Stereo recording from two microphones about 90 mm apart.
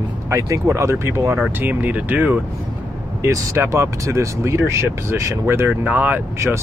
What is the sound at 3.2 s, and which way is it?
Speech, 35° right (ahead or behind).